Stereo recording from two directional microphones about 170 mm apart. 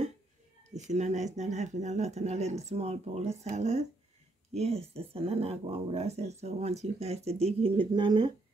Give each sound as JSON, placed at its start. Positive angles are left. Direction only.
{"t": 0.7, "sound": "speech", "side_deg": -45}